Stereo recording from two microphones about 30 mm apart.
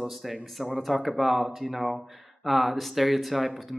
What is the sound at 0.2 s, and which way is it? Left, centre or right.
Speech, centre.